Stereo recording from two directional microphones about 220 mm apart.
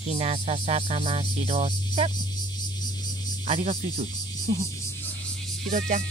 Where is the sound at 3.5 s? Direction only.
30° right (ahead or behind).